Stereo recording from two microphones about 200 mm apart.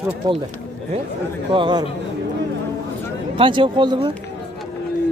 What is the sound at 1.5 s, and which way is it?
Speech, 25° right (ahead or behind).